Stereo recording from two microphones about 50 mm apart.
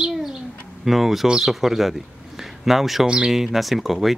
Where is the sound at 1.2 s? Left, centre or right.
Centre.